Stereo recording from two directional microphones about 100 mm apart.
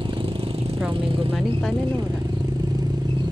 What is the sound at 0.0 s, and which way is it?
Vehicle, 60° right (ahead or behind).